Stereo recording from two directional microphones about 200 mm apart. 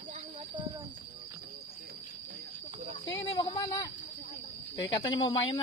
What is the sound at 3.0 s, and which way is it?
A woman's voice, 20° left (ahead or behind).